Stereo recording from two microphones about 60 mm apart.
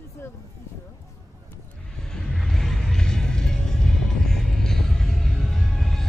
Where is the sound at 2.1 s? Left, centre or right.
Centre.